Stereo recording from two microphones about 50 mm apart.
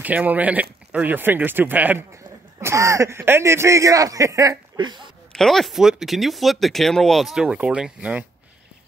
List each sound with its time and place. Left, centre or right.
0.0 s speech: right
2.6 s speech: right
5.3 s speech: centre
5.8 s speech: centre
7.4 s speech: right